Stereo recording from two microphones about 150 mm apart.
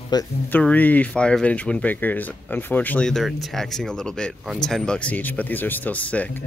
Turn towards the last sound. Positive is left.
turn(degrees=10)  # may be behind; listen again after turning